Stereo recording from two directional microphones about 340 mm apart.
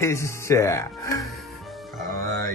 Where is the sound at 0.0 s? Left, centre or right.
Centre.